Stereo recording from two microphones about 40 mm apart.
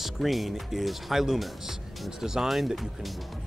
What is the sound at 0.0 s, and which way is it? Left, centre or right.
Speech, centre.